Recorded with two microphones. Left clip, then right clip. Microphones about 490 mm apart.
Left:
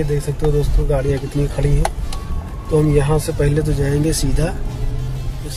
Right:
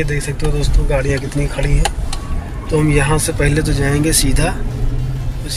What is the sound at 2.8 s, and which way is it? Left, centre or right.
Speech, left.